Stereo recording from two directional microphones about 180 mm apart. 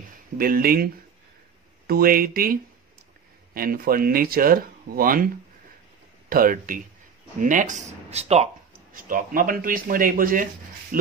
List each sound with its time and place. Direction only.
0.4 s speech: 55° right (ahead or behind)
1.9 s speech: 55° right (ahead or behind); by 8.5 s 35° right (ahead or behind)
8.9 s speech: 50° right (ahead or behind)